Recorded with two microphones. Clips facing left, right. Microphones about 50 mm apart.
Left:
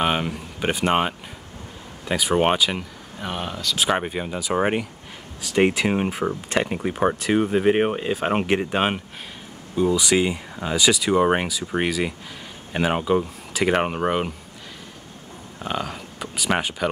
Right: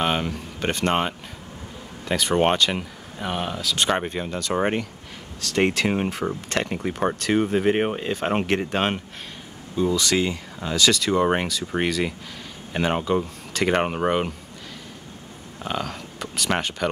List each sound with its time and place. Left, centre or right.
0.0 s speech: centre
15.6 s speech: centre